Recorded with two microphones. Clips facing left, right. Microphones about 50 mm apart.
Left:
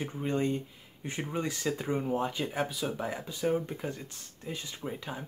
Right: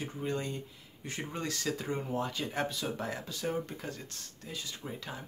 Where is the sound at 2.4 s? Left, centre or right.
Centre.